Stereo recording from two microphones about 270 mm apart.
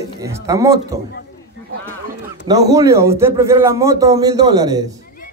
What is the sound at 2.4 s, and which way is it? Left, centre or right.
A man's voice, centre.